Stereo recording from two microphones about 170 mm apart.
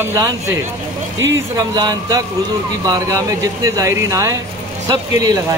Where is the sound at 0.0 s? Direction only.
20° right (ahead or behind).